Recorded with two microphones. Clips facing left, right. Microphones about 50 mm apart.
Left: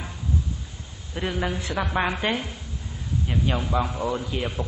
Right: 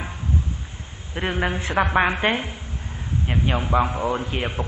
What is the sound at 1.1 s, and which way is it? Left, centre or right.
A man's voice, right.